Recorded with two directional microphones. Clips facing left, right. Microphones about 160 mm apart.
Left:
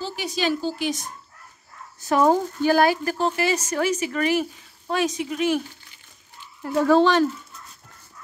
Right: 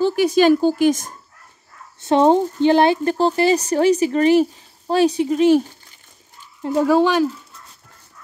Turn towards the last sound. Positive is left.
turn(degrees=-10)  # may be behind; listen again after turning